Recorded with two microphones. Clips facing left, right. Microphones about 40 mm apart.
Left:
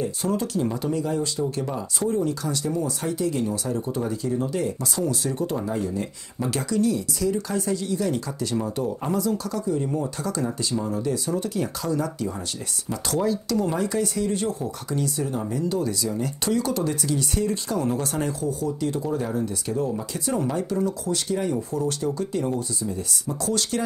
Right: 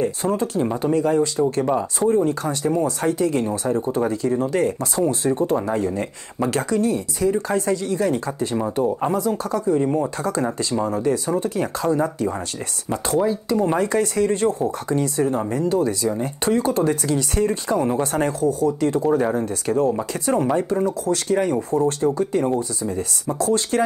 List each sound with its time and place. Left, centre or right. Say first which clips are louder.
0.0 s speech: right 4 dB; right